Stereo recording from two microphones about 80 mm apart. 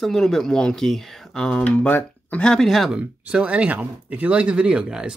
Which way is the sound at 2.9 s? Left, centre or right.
Centre.